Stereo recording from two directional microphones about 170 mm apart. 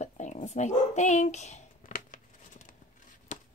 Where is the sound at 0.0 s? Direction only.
45° left (ahead or behind).